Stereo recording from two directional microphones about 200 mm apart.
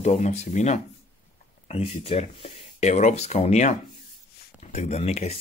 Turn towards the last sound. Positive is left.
turn(degrees=35)  # may be behind; listen again after turning